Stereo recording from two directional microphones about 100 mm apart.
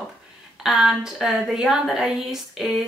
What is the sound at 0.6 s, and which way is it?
A woman's voice, 5° right (ahead or behind).